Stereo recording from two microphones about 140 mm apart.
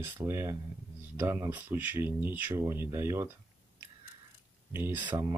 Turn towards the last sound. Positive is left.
turn(degrees=-30)  # may be behind; listen again after turning